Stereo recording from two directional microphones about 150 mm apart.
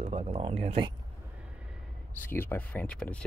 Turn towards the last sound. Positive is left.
turn(degrees=5)  # may be behind; listen again after turning